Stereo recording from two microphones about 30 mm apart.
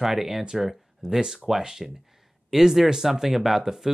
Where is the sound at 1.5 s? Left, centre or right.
Centre.